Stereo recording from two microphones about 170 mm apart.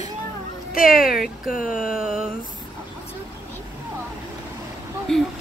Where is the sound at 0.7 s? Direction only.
55° left (ahead or behind).